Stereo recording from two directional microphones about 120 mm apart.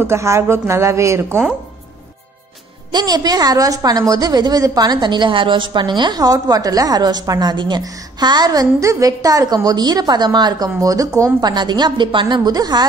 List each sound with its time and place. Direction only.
0.0 s a woman's voice: 25° right (ahead or behind)
2.9 s a woman's voice: 35° right (ahead or behind)
11.5 s a woman's voice: 40° right (ahead or behind)